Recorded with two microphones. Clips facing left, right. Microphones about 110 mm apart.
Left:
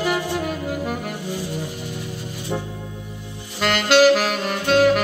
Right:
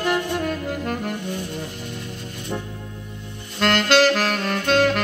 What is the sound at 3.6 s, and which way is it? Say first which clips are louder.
Saxophone: left 2 dB; 5° left (ahead or behind).